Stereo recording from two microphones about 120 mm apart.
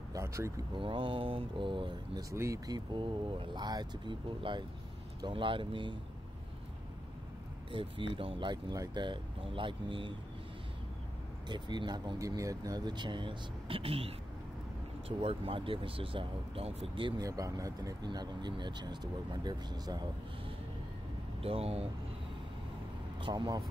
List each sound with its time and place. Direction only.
0.1 s vehicle: 25° right (ahead or behind)
0.7 s speech: 45° right (ahead or behind)
2.3 s speech: 25° right (ahead or behind); by 5.9 s 45° right (ahead or behind)
7.7 s speech: 45° right (ahead or behind)
11.4 s speech: 40° right (ahead or behind)
17.2 s speech: 30° right (ahead or behind)
21.4 s speech: 55° right (ahead or behind)
23.2 s speech: 35° right (ahead or behind)